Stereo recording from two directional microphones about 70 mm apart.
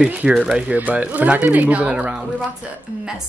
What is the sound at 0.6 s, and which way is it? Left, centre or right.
Speech, centre.